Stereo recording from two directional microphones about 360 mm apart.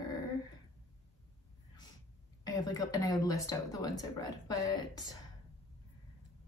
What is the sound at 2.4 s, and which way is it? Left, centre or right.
Speech, centre.